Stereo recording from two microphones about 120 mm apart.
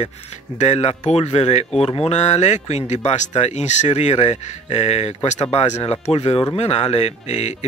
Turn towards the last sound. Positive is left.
turn(degrees=70)  # may be behind; listen again after turning